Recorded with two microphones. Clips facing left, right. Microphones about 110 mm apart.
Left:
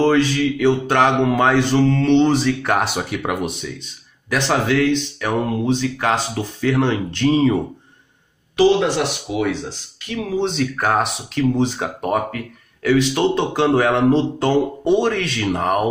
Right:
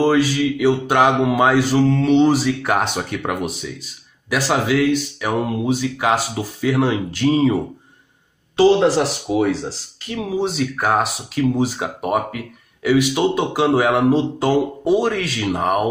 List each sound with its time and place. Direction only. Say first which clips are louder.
0.0 s speech: even; 10° right (ahead or behind)
8.5 s speech: right 2 dB; 35° right (ahead or behind)
10.1 s speech: even; 10° right (ahead or behind)